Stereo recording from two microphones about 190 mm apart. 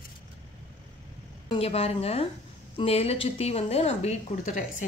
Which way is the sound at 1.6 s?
30° left (ahead or behind).